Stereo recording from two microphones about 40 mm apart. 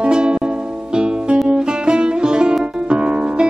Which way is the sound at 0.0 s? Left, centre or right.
Right.